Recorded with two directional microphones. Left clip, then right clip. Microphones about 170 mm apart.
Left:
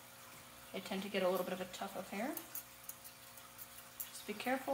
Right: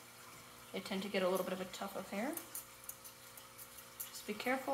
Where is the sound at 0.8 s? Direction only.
30° right (ahead or behind).